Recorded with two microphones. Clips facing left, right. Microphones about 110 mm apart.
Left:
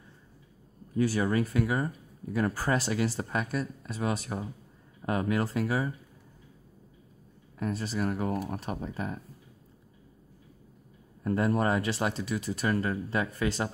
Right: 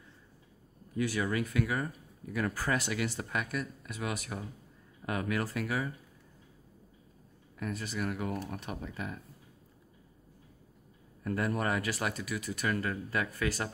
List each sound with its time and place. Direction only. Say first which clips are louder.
0.9 s speech: left 5 dB; 35° left (ahead or behind)
7.5 s speech: left 5 dB; 30° left (ahead or behind)
11.2 s speech: left 5 dB; 30° left (ahead or behind)